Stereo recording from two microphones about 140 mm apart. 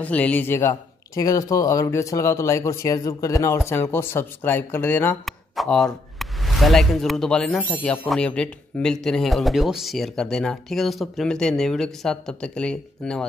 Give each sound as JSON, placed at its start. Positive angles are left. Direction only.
{"t": 0.0, "sound": "speech", "side_deg": 10}
{"t": 5.2, "sound": "speech", "side_deg": 0}